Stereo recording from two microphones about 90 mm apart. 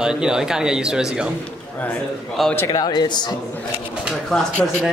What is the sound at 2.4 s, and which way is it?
Speech, centre (ahead or behind).